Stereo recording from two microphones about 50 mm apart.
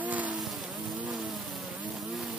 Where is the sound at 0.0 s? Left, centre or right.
Right.